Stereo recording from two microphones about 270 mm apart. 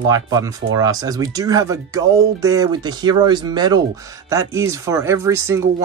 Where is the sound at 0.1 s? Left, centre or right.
Centre.